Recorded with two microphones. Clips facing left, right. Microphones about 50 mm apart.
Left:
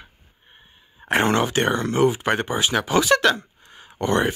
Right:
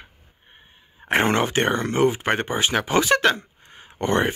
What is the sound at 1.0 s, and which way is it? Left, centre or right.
Speech, right.